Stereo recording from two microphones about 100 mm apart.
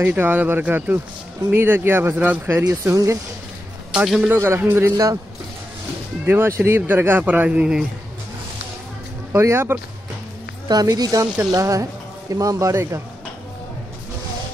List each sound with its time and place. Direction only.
0.0 s speech: 20° right (ahead or behind)
2.6 s speech: 30° right (ahead or behind)
3.9 s a man's voice: 5° right (ahead or behind)
4.3 s speech: 25° right (ahead or behind)
6.2 s speech: 25° right (ahead or behind)
9.3 s speech: 25° right (ahead or behind)
10.7 s speech: 40° right (ahead or behind)